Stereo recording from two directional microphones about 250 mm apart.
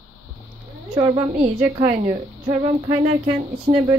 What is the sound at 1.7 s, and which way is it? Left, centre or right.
Speech, right.